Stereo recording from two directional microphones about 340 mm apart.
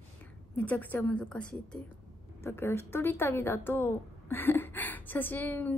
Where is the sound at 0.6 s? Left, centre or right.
Centre.